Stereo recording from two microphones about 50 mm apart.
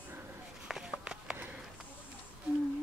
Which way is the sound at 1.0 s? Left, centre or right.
Centre.